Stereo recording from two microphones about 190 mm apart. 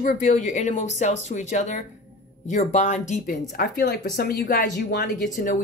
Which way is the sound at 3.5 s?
55° left (ahead or behind).